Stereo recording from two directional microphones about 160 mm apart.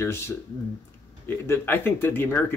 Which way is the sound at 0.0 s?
15° left (ahead or behind).